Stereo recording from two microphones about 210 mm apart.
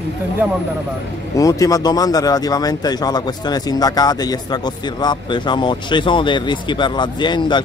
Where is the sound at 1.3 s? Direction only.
15° left (ahead or behind).